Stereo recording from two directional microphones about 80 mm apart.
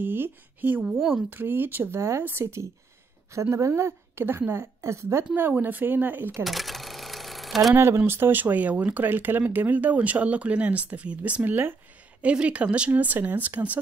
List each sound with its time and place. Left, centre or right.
0.0 s speech: right
0.9 s a woman's voice: centre
1.3 s a woman's voice: right
5.3 s speech: right
6.4 s cash register: centre
7.7 s a woman's voice: right